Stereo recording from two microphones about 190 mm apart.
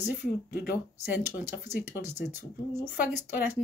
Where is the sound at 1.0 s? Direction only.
15° right (ahead or behind).